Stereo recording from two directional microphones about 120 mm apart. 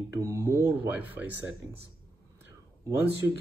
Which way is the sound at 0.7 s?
15° right (ahead or behind).